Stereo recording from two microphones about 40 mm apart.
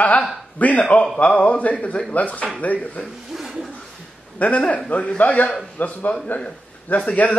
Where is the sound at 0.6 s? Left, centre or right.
Left.